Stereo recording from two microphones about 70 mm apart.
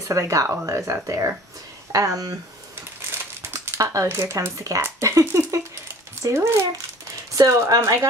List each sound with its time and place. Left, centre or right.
0.1 s speech: right
3.1 s crumpling: right
5.0 s speech: right
7.3 s speech: right